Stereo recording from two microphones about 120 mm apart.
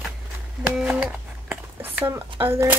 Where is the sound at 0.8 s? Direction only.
10° right (ahead or behind).